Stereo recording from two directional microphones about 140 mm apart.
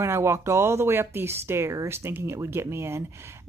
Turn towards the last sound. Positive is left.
turn(degrees=-20)  # may be behind; listen again after turning